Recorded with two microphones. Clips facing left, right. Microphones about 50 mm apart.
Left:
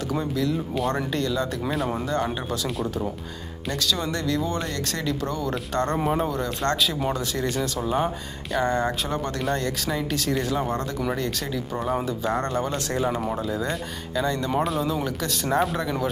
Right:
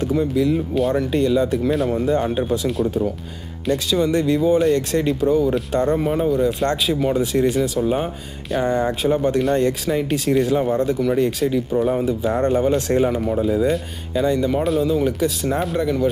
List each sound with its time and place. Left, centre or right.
0.1 s speech: centre
1.1 s speech: centre
1.6 s speech: centre
2.3 s speech: centre
3.7 s speech: right
4.7 s speech: right
5.2 s speech: centre
13.1 s speech: centre
13.4 s speech: centre
15.0 s speech: centre
15.4 s speech: centre